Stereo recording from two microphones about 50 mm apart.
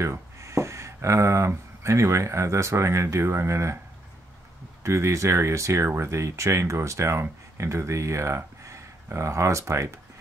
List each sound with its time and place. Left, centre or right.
0.0 s speech: right
4.8 s speech: right